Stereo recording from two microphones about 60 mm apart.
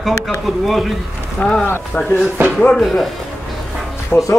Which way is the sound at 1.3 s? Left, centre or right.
Centre.